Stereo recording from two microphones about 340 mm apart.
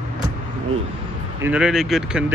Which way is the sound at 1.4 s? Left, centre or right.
Centre.